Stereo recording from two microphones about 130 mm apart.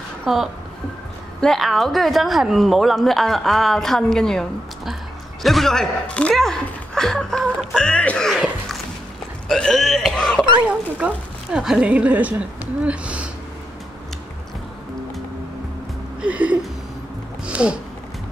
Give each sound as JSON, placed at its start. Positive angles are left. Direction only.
{"t": 0.2, "sound": "a woman's voice", "side_deg": 0}
{"t": 10.7, "sound": "speech", "side_deg": -10}
{"t": 16.2, "sound": "speech", "side_deg": -10}
{"t": 17.5, "sound": "a sound", "side_deg": -10}